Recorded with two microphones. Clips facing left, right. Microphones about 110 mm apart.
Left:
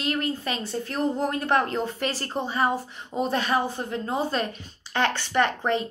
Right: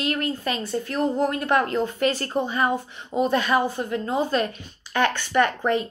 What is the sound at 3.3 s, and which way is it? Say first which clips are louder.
Speech: right 2 dB; 35° left (ahead or behind).